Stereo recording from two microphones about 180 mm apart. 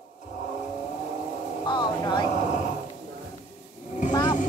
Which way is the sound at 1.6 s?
25° left (ahead or behind).